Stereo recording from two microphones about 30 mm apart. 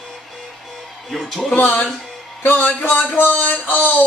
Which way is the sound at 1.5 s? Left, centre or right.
Left.